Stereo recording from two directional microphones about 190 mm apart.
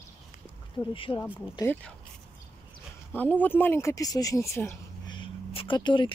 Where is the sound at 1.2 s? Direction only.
10° left (ahead or behind).